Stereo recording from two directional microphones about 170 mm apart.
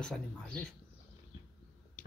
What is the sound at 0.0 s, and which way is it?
Speech, 5° left (ahead or behind).